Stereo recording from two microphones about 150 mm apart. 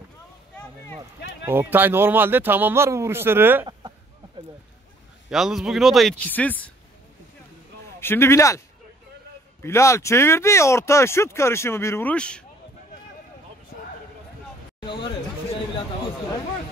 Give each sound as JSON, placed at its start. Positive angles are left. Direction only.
{"t": 1.5, "sound": "a man's voice", "side_deg": -15}
{"t": 5.3, "sound": "a man's voice", "side_deg": -5}
{"t": 8.0, "sound": "speech", "side_deg": 15}
{"t": 9.6, "sound": "speech", "side_deg": 20}